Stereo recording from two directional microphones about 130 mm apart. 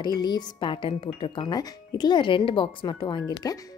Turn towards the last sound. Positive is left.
turn(degrees=30)  # may be behind; listen again after turning